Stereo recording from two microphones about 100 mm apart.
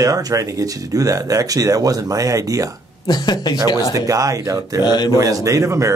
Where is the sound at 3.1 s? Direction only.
45° left (ahead or behind).